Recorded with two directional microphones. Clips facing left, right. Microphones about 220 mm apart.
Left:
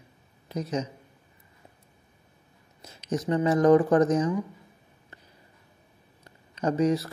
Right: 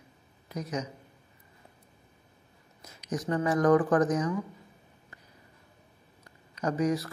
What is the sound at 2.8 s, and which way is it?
Speech, 30° left (ahead or behind).